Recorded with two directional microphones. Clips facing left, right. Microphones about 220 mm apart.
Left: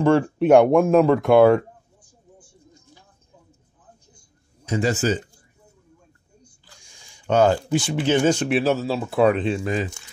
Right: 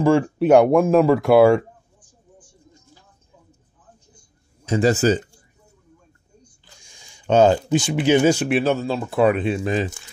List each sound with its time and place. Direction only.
0.2 s speech: centre (ahead or behind)
4.6 s speech: 35° right (ahead or behind)
6.6 s speech: 20° right (ahead or behind)
9.6 s speech: 25° right (ahead or behind)